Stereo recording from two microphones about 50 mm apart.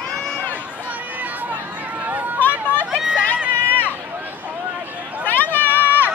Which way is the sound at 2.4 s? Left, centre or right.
Left.